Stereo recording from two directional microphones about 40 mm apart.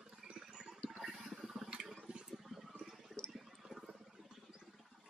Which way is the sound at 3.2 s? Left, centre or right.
Centre.